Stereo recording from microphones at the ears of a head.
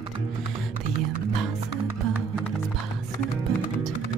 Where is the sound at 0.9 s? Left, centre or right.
Right.